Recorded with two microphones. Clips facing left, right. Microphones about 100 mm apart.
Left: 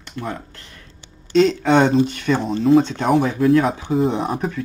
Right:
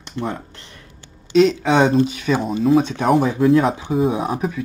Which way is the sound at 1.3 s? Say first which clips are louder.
Even; 5° right (ahead or behind).